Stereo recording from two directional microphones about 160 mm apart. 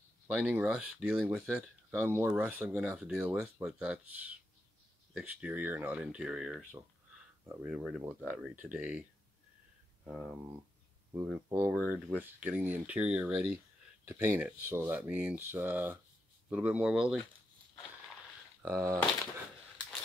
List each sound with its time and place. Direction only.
0.3 s speech: 5° right (ahead or behind)
1.9 s speech: 15° right (ahead or behind)
10.0 s speech: centre (ahead or behind)
11.5 s speech: 10° right (ahead or behind)
18.6 s speech: 15° right (ahead or behind)